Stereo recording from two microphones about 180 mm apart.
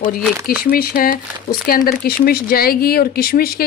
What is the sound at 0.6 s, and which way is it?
Speech, 55° left (ahead or behind).